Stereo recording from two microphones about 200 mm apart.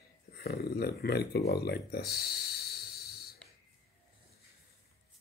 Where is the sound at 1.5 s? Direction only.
55° left (ahead or behind).